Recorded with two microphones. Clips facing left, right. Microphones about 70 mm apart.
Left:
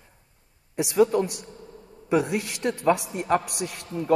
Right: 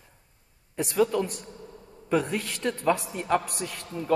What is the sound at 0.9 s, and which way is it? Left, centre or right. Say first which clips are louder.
Speech: left 4 dB; left.